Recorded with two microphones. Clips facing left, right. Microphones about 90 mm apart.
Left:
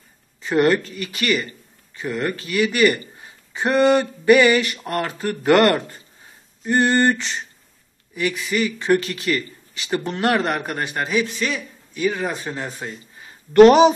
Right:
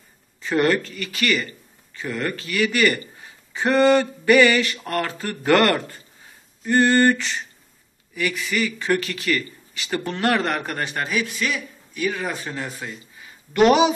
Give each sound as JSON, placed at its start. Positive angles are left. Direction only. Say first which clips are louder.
{"t": 0.4, "sound": "speech", "louder": "left 2 dB", "side_deg": 20}
{"t": 3.5, "sound": "a sound", "louder": "even", "side_deg": 15}
{"t": 6.6, "sound": "speech", "louder": "right 1 dB", "side_deg": 15}
{"t": 13.5, "sound": "speech", "louder": "left 6 dB", "side_deg": 40}